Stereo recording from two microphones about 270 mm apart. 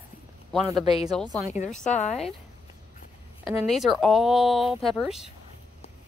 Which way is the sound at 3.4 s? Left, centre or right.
Centre.